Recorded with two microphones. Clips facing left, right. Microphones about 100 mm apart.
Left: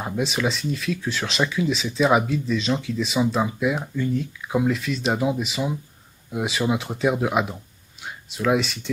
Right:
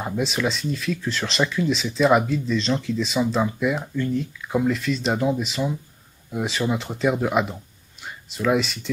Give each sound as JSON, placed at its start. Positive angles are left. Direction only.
{"t": 0.0, "sound": "speech", "side_deg": 0}